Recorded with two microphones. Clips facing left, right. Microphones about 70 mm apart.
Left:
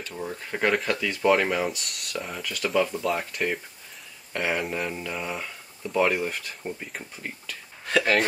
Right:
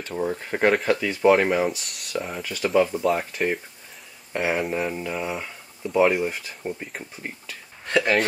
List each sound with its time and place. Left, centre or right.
0.1 s speech: right
0.7 s speech: centre
2.4 s speech: centre